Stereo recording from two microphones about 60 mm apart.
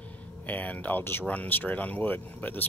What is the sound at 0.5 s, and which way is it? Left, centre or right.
Speech, left.